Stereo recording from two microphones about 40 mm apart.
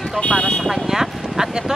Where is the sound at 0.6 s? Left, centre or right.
Centre.